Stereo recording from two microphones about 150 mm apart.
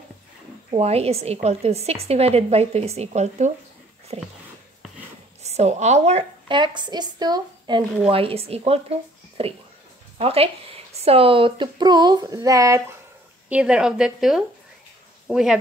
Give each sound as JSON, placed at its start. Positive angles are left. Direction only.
{"t": 0.7, "sound": "a woman's voice", "side_deg": -45}
{"t": 5.4, "sound": "a woman's voice", "side_deg": -45}
{"t": 6.5, "sound": "a woman's voice", "side_deg": -30}
{"t": 8.1, "sound": "a woman's voice", "side_deg": -40}
{"t": 13.5, "sound": "a woman's voice", "side_deg": -5}